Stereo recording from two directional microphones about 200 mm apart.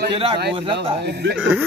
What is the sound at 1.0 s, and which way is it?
Speech, 55° right (ahead or behind).